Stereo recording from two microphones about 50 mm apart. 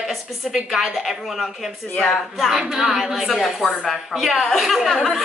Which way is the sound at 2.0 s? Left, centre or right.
Centre.